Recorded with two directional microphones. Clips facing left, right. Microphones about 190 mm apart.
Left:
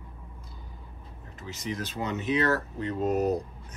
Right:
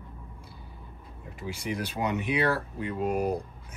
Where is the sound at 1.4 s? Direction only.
10° right (ahead or behind).